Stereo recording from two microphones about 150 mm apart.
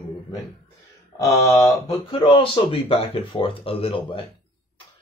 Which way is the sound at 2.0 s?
35° left (ahead or behind).